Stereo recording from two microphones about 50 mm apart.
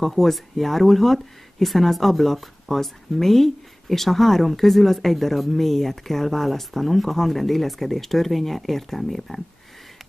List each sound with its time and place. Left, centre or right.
0.0 s speech: centre